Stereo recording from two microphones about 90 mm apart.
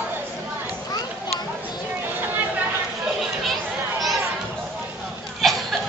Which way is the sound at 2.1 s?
20° right (ahead or behind).